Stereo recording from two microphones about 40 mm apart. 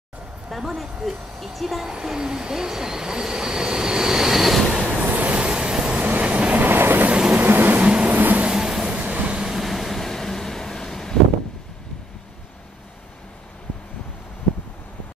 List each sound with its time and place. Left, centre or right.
0.5 s a woman's voice: centre
2.0 s train: centre
5.1 s vehicle: right
5.4 s train: right
5.9 s train: right
6.6 s vehicle: right
7.1 s vehicle: right
7.3 s vehicle: right
7.8 s vehicle: right
8.1 s vehicle: right
8.5 s vehicle: centre
9.0 s train: right
9.3 s vehicle: centre
9.6 s vehicle: centre